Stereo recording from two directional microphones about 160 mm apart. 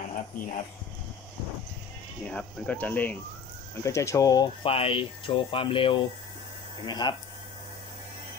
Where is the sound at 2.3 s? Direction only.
10° left (ahead or behind); by 7.1 s 25° left (ahead or behind).